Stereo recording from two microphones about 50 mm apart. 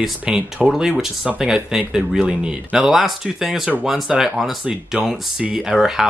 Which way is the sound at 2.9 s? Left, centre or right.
Centre.